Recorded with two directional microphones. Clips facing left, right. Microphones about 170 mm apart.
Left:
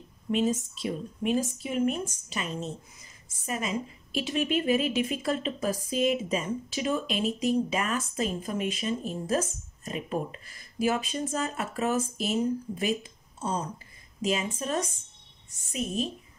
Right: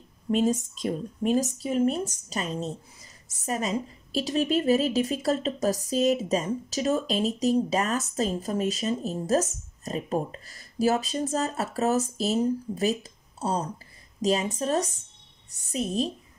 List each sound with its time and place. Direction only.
0.3 s speech: 45° right (ahead or behind)